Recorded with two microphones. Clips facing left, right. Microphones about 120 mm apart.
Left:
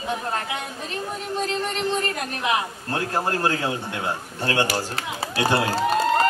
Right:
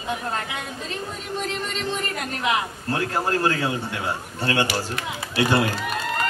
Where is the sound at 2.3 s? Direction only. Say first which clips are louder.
Right 2 dB; 20° left (ahead or behind).